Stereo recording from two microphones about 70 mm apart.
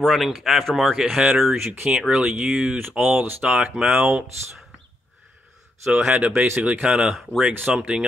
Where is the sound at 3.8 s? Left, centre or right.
Centre.